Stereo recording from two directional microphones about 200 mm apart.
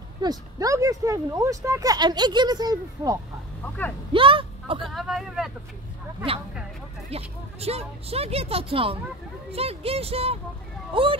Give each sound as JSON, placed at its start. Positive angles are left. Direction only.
{"t": 0.2, "sound": "speech", "side_deg": -20}
{"t": 4.8, "sound": "speech", "side_deg": 0}
{"t": 7.1, "sound": "speech", "side_deg": -30}